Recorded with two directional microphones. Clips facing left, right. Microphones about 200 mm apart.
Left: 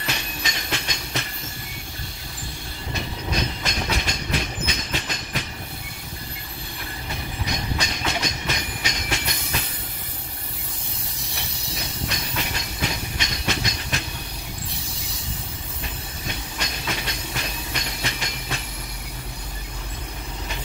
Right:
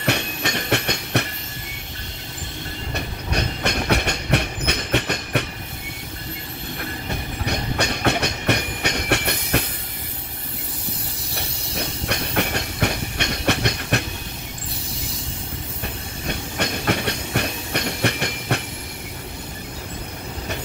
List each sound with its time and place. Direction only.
0.0 s train: 65° right (ahead or behind)
2.9 s train: 65° right (ahead or behind)
7.4 s train: 60° right (ahead or behind)
11.3 s train: 60° right (ahead or behind)
16.3 s train: 60° right (ahead or behind)